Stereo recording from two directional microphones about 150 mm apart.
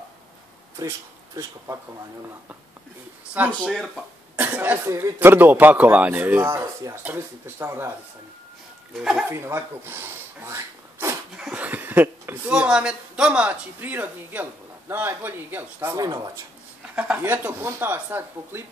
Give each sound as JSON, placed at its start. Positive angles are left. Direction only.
{"t": 0.7, "sound": "speech", "side_deg": -20}
{"t": 3.3, "sound": "speech", "side_deg": -10}
{"t": 8.9, "sound": "speech", "side_deg": 0}
{"t": 9.3, "sound": "speech", "side_deg": -15}
{"t": 11.3, "sound": "speech", "side_deg": -5}
{"t": 16.9, "sound": "speech", "side_deg": -10}